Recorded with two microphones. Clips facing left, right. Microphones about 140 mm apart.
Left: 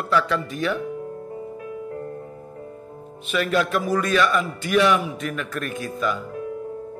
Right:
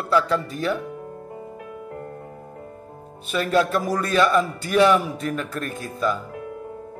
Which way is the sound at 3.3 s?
35° right (ahead or behind).